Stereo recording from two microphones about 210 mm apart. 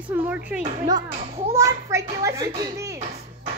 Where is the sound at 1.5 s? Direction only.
15° right (ahead or behind).